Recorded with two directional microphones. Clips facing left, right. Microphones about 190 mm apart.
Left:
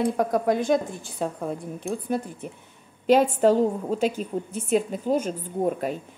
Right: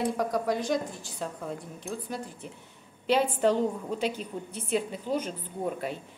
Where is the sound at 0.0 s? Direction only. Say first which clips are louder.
Left 5 dB; 50° left (ahead or behind).